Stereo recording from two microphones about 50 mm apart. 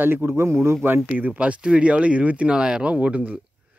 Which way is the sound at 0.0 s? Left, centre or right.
Right.